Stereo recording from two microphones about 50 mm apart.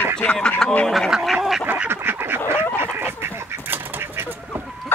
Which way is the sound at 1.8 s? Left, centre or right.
Right.